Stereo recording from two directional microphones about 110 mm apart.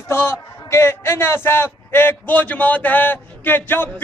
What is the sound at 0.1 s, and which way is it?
A man's voice, 20° left (ahead or behind).